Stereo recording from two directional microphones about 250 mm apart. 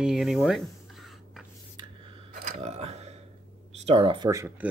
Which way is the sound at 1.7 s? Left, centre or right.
Centre.